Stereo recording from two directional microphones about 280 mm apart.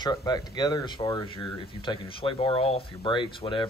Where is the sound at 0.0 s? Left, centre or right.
Centre.